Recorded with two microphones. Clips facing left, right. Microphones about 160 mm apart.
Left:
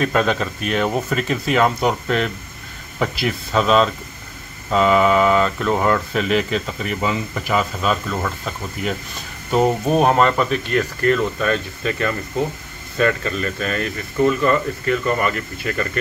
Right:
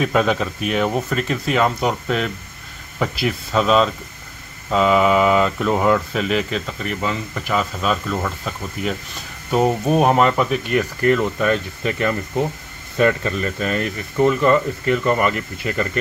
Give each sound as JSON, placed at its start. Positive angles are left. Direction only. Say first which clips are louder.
{"t": 0.0, "sound": "speech", "louder": "right 1 dB", "side_deg": -5}